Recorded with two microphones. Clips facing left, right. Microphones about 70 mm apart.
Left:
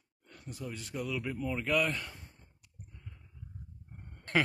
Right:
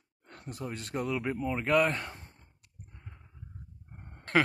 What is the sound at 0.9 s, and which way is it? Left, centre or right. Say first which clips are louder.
Speech: right 5 dB; right.